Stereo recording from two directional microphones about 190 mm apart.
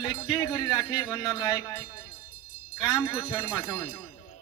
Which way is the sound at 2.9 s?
20° left (ahead or behind).